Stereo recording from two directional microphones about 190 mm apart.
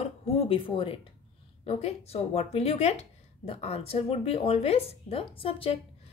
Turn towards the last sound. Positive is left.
turn(degrees=30)  # may be behind; listen again after turning